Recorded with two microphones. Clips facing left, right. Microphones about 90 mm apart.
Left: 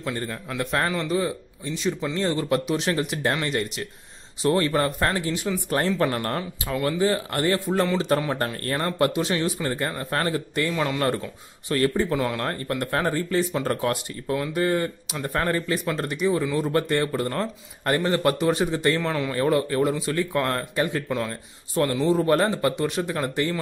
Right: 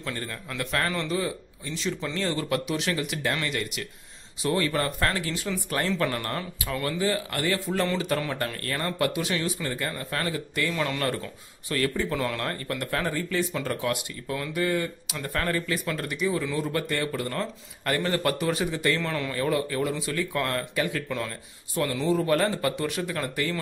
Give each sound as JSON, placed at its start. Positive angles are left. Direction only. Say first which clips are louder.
{"t": 0.0, "sound": "speech", "louder": "left 4 dB", "side_deg": 25}
{"t": 1.8, "sound": "speech", "louder": "left 4 dB", "side_deg": 15}
{"t": 12.2, "sound": "speech", "louder": "left 3 dB", "side_deg": 20}
{"t": 18.9, "sound": "speech", "louder": "left 4 dB", "side_deg": 15}
{"t": 19.3, "sound": "speech", "louder": "left 5 dB", "side_deg": 35}
{"t": 22.0, "sound": "speech", "louder": "left 2 dB", "side_deg": 30}
{"t": 22.5, "sound": "speech", "louder": "left 4 dB", "side_deg": 25}